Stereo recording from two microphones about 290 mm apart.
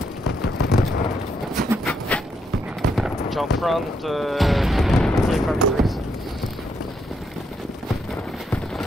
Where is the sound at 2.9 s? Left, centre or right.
Centre.